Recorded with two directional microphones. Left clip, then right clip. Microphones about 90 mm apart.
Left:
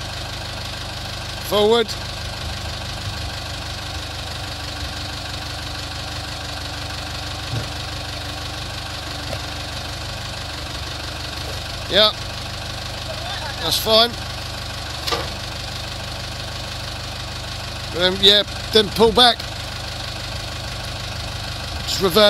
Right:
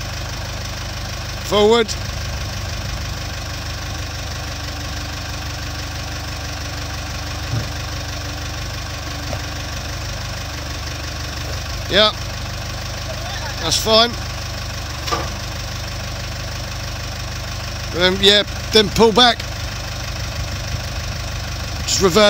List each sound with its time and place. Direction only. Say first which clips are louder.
1.5 s speech: right 2 dB; 5° right (ahead or behind)
11.9 s speech: right 1 dB; 10° right (ahead or behind)
13.7 s speech: right 1 dB; 10° right (ahead or behind)
17.9 s speech: right 1 dB; 15° right (ahead or behind)
21.8 s vehicle: right 3 dB; 15° right (ahead or behind)